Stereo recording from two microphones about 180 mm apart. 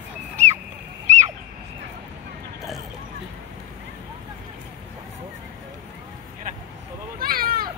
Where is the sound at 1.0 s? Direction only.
40° right (ahead or behind).